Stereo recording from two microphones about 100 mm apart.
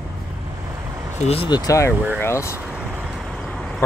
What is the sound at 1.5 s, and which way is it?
Speech, 30° left (ahead or behind).